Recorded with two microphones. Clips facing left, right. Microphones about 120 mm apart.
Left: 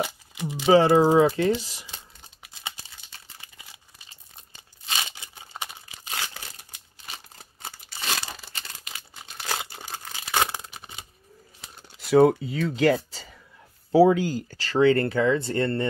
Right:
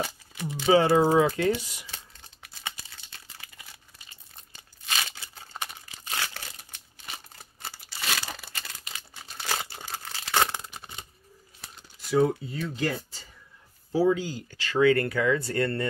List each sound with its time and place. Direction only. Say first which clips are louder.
0.0 s a sound: left 3 dB; 15° left (ahead or behind)
0.7 s speech: left 3 dB; 30° left (ahead or behind)
4.8 s a sound: left 1 dB; 25° left (ahead or behind)
7.6 s tearing: left 1 dB; 25° left (ahead or behind)
9.3 s crumpling: left 1 dB; centre (ahead or behind)
9.7 s crumpling: even; 15° left (ahead or behind)
11.9 s speech: left 6 dB; 75° left (ahead or behind)
13.9 s speech: left 6 dB; 65° left (ahead or behind)
14.5 s speech: left 1 dB; 35° left (ahead or behind)